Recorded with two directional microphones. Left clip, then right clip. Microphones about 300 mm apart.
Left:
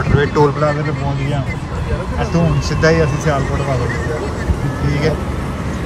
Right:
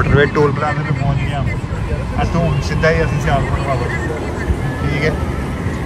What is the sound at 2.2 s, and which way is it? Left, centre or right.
Speech, left.